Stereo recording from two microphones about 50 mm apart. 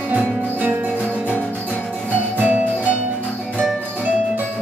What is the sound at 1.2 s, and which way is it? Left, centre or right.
Music, left.